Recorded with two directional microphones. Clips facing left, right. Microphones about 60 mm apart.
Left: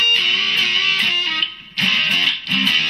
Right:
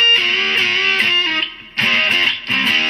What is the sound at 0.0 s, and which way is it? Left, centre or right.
Music, right.